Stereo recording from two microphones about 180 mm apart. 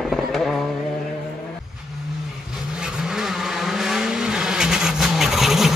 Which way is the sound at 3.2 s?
Centre (ahead or behind).